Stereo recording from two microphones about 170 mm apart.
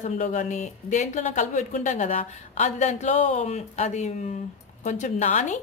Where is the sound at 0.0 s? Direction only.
45° left (ahead or behind).